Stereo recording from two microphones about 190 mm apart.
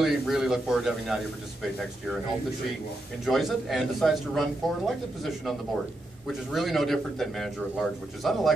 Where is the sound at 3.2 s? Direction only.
Centre (ahead or behind).